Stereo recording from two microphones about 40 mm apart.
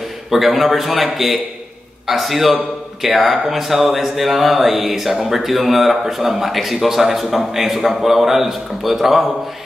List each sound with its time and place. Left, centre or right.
0.3 s speech: centre